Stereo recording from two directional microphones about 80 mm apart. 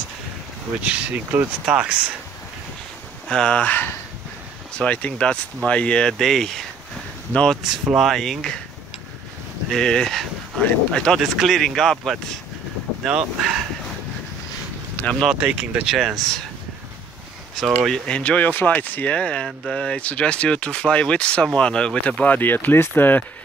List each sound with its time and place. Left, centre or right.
0.8 s speech: right
3.3 s speech: centre
7.9 s speech: centre
9.7 s speech: centre
11.1 s speech: centre
15.0 s a sound: left
15.3 s speech: centre
17.6 s speech: centre; by 23.2 s left